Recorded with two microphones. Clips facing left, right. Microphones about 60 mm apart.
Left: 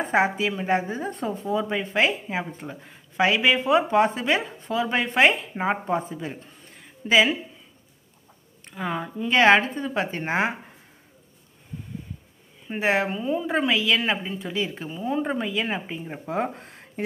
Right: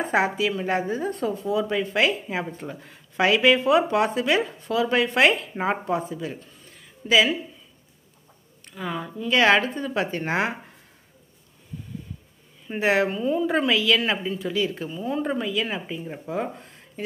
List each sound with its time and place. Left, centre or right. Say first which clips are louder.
0.5 s a woman's voice: even; centre
3.7 s speech: left 1 dB; left
6.1 s a sound: right 1 dB; left
8.6 s speech: left 2 dB; left
12.6 s a woman's voice: right 2 dB; centre
16.3 s speech: left 2 dB; left